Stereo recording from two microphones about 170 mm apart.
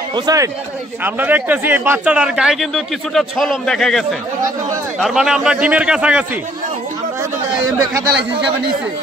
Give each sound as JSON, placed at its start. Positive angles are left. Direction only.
{"t": 0.1, "sound": "speech", "side_deg": -20}
{"t": 1.0, "sound": "a man's voice", "side_deg": -10}